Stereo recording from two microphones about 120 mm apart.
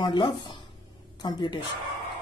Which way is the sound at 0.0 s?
40° left (ahead or behind).